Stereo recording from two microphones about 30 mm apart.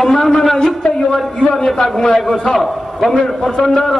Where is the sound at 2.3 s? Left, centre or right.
Centre.